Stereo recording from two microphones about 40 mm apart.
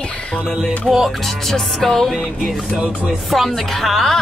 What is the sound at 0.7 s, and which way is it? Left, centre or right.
Music, centre.